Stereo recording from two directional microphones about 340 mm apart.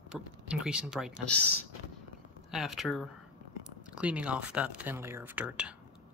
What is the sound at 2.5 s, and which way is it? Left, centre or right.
Speech, centre.